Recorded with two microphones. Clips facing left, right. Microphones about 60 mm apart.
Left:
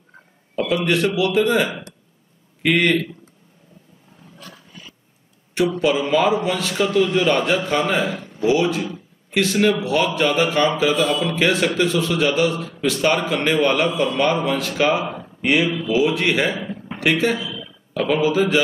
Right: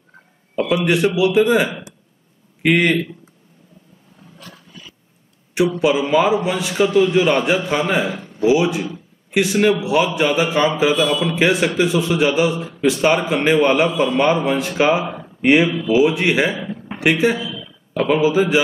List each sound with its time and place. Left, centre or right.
0.6 s a man's voice: centre
5.8 s a man's voice: centre
15.4 s a man's voice: right
15.9 s a man's voice: centre